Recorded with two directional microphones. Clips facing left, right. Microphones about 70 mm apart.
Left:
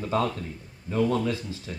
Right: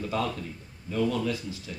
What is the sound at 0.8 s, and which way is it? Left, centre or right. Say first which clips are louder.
Speech: left 3 dB; left.